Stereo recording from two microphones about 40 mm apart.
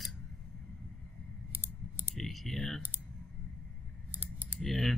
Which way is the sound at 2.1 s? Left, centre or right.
Centre.